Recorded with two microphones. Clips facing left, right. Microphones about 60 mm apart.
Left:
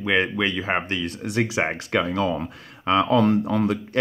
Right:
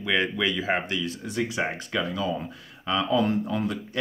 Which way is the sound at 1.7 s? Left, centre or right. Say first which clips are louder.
Left 6 dB; left.